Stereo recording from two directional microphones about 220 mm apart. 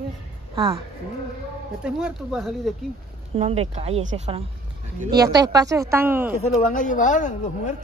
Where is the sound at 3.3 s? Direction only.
25° right (ahead or behind).